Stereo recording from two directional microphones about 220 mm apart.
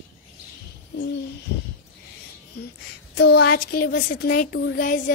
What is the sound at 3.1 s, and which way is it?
Speech, 50° left (ahead or behind).